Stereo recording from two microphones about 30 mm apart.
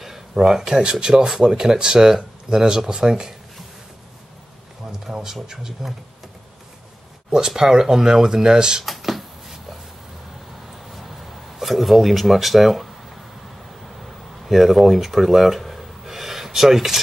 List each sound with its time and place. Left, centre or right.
0.3 s speech: right
5.3 s speech: centre
7.2 s speech: right
8.8 s a sound: centre
10.9 s a sound: centre
14.4 s speech: centre